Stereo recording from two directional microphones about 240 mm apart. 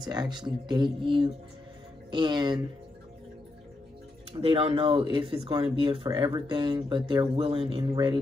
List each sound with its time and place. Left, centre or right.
0.0 s speech: centre
4.4 s speech: right